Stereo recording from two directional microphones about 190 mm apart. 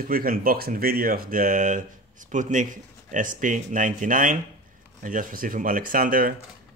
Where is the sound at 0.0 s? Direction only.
50° right (ahead or behind).